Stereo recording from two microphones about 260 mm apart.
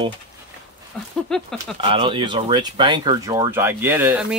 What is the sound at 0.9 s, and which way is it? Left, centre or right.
Speech, centre.